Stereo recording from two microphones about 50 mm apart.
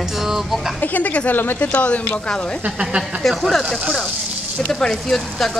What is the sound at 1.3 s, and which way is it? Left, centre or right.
Speech, left.